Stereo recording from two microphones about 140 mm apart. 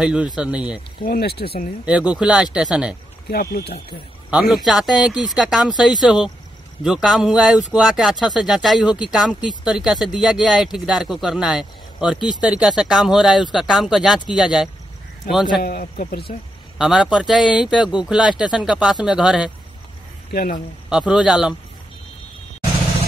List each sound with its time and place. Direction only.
0.0 s speech: 10° right (ahead or behind)
1.0 s a man's voice: 90° left
1.9 s speech: 10° right (ahead or behind)
4.3 s speech: 5° right (ahead or behind)
15.6 s a man's voice: 85° left
16.7 s speech: 5° right (ahead or behind)
20.3 s a man's voice: 90° left
20.9 s speech: 5° right (ahead or behind)